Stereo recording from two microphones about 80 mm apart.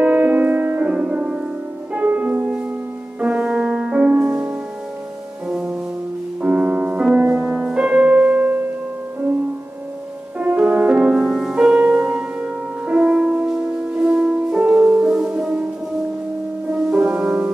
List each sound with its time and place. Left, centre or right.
0.0 s music: centre
5.5 s music: centre
10.4 s music: centre
16.7 s music: centre